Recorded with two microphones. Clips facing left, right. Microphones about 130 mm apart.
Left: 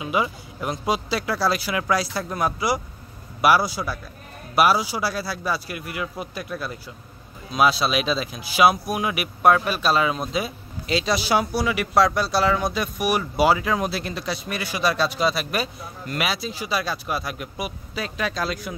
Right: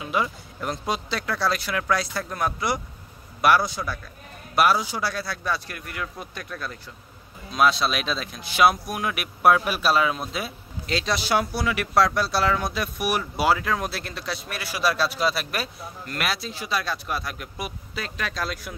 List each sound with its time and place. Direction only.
0.0 s speech: 5° left (ahead or behind)